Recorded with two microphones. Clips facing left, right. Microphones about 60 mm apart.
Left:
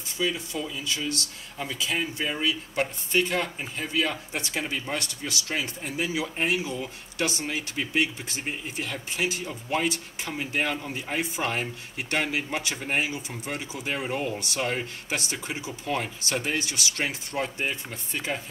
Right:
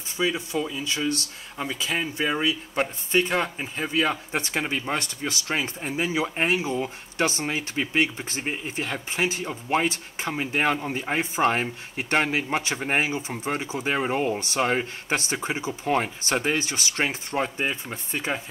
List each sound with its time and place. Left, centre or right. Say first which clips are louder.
0.2 s speech: right 3 dB; right